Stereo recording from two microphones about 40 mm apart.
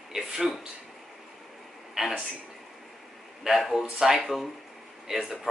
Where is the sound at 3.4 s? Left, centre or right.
Centre.